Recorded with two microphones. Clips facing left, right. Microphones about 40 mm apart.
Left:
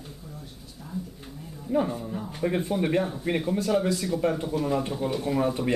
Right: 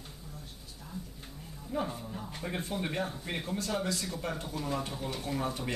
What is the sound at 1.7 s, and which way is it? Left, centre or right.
A man's voice, centre.